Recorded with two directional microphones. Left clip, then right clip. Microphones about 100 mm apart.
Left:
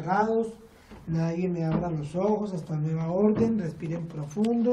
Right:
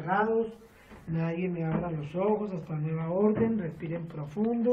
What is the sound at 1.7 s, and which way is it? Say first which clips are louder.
Speech: left 3 dB; 25° left (ahead or behind).